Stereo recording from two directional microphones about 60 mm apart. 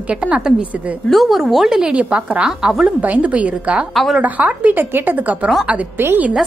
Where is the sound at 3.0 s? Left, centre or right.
Right.